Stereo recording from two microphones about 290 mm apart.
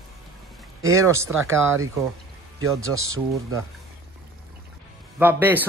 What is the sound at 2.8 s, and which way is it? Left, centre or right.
Speech, right.